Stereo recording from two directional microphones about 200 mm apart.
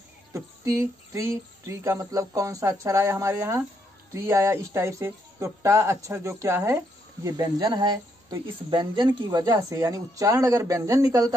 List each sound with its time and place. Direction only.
0.3 s speech: 15° right (ahead or behind)